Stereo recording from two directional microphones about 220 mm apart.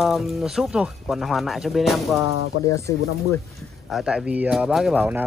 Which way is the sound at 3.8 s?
Centre (ahead or behind).